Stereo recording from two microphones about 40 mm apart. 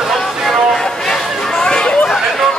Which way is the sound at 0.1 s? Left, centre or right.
Centre.